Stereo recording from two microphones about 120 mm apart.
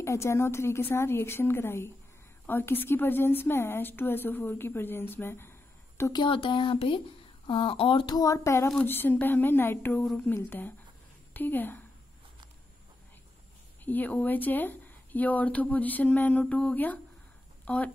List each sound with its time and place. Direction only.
0.0 s speech: 25° left (ahead or behind)
6.1 s speech: 45° left (ahead or behind)
8.2 s speech: 25° left (ahead or behind)
13.8 s speech: 15° left (ahead or behind)